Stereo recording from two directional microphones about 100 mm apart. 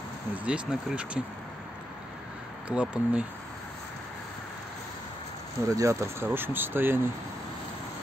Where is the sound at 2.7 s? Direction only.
10° right (ahead or behind).